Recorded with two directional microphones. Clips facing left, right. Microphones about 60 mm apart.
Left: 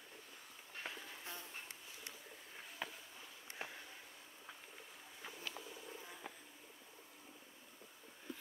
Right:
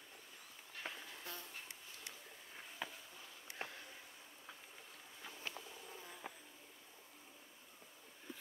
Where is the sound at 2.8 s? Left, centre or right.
Centre.